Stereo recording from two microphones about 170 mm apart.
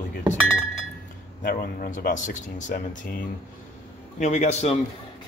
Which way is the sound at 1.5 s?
55° left (ahead or behind).